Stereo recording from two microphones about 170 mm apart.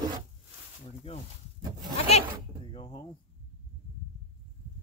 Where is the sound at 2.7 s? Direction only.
30° left (ahead or behind).